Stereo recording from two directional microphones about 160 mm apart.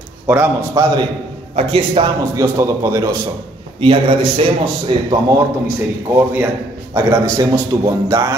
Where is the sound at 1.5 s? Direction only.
35° right (ahead or behind).